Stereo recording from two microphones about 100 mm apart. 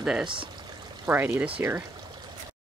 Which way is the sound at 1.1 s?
20° right (ahead or behind).